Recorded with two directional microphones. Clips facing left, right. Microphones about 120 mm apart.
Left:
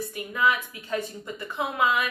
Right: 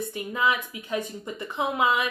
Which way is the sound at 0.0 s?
25° right (ahead or behind).